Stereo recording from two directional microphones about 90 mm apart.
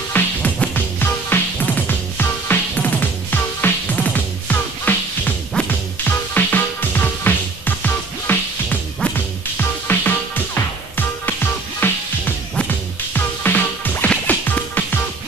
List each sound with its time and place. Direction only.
0.1 s music: 20° left (ahead or behind)